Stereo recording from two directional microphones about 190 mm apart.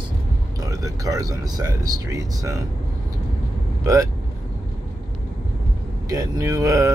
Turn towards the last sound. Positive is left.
turn(degrees=-15)  # may be behind; listen again after turning